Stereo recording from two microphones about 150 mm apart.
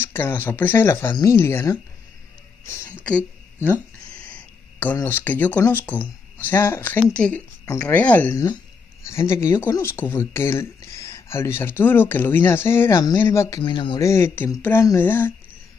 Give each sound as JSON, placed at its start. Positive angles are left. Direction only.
{"t": 0.0, "sound": "speech", "side_deg": 15}
{"t": 3.5, "sound": "speech", "side_deg": -15}
{"t": 4.2, "sound": "a sound", "side_deg": 10}
{"t": 4.9, "sound": "speech", "side_deg": 15}
{"t": 8.3, "sound": "speech", "side_deg": 20}
{"t": 13.6, "sound": "speech", "side_deg": 35}
{"t": 14.0, "sound": "speech", "side_deg": 20}